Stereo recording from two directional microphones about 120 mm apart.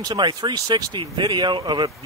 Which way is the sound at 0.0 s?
35° right (ahead or behind).